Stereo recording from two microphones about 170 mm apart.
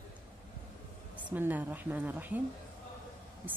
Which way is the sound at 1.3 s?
10° right (ahead or behind).